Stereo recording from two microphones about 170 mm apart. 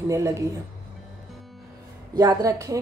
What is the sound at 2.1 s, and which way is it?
Speech, 20° right (ahead or behind).